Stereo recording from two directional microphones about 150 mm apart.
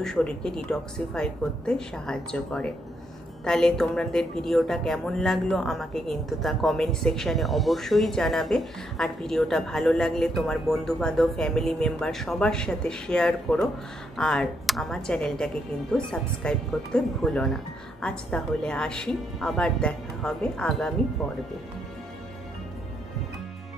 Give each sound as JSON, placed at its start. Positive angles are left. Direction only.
{"t": 0.0, "sound": "a woman's voice", "side_deg": 5}